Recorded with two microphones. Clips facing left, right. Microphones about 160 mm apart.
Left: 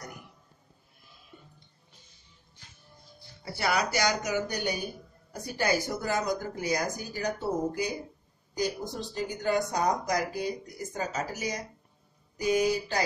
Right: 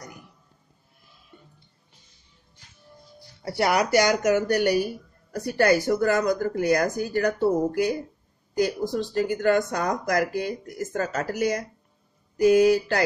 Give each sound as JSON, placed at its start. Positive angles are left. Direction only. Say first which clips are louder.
{"t": 3.4, "sound": "speech", "louder": "right 6 dB", "side_deg": -70}
{"t": 8.9, "sound": "speech", "louder": "right 9 dB", "side_deg": -70}
{"t": 12.6, "sound": "speech", "louder": "right 8 dB", "side_deg": -75}